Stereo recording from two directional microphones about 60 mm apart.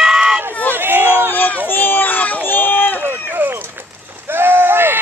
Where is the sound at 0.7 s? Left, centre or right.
Right.